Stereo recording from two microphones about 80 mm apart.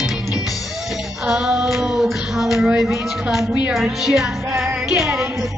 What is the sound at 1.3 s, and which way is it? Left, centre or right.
Female singing, centre.